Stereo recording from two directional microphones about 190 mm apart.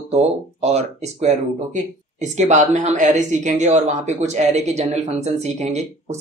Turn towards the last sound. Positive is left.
turn(degrees=-35)  # may be behind; listen again after turning